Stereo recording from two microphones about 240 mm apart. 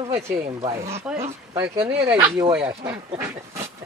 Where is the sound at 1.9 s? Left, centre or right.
Centre.